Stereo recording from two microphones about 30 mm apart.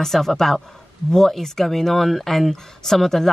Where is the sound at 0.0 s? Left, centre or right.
Centre.